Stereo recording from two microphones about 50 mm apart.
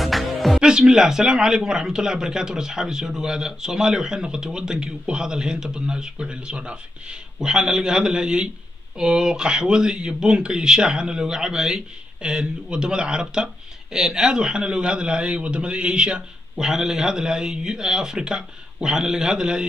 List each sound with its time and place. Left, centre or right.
0.0 s music: centre
0.6 s a man's voice: centre